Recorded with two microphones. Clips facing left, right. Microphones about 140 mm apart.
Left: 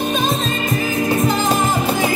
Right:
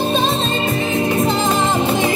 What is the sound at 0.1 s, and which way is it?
Music, 30° right (ahead or behind).